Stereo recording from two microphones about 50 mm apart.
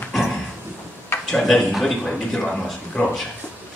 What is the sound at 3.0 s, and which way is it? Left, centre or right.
Speech, left.